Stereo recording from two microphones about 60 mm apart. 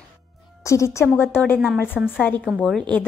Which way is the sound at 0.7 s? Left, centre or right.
Left.